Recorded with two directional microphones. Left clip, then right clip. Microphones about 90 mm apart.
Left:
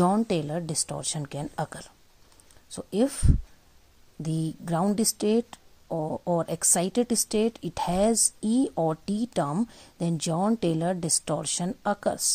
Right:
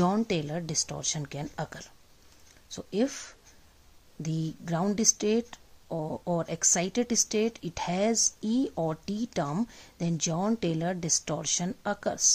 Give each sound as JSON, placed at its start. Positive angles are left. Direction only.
{"t": 0.0, "sound": "a woman's voice", "side_deg": 35}
{"t": 0.3, "sound": "a woman's voice", "side_deg": 45}
{"t": 2.9, "sound": "a woman's voice", "side_deg": 45}
{"t": 10.7, "sound": "a woman's voice", "side_deg": 50}